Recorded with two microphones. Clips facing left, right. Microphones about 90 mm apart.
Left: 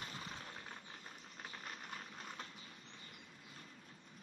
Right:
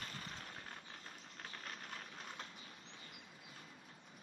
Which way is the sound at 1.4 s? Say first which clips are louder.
Even; 5° left (ahead or behind).